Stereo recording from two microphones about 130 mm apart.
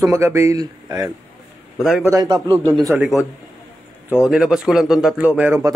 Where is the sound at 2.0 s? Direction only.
25° right (ahead or behind).